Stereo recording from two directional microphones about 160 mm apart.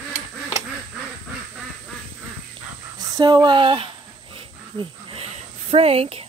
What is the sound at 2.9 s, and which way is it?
Speech, 25° right (ahead or behind).